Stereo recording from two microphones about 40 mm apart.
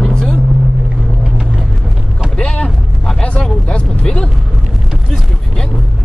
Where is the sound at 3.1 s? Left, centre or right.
Left.